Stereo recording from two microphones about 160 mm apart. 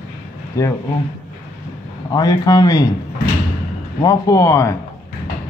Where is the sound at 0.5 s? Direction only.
20° left (ahead or behind).